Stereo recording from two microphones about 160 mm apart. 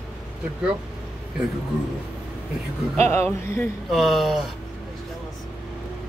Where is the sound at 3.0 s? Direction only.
15° left (ahead or behind).